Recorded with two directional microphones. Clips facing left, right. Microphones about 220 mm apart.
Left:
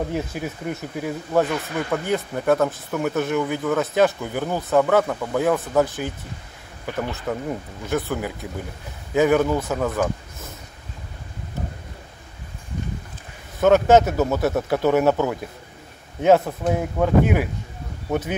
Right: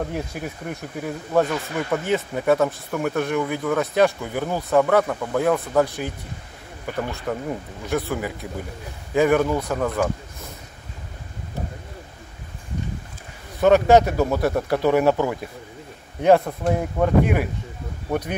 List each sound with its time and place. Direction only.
0.1 s speech: centre (ahead or behind)
13.6 s speech: centre (ahead or behind)